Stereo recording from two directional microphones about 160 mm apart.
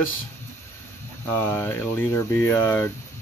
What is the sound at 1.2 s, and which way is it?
Speech, 15° left (ahead or behind).